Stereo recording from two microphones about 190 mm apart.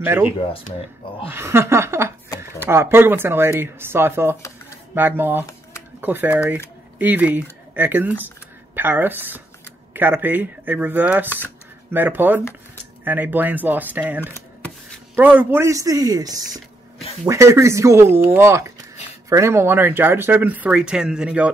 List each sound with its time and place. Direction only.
0.0 s speech: 10° right (ahead or behind)
0.4 s speech: 30° left (ahead or behind)
1.3 s speech: 15° right (ahead or behind)